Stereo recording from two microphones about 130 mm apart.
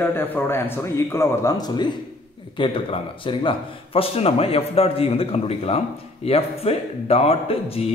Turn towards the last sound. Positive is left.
turn(degrees=50)  # may be behind; listen again after turning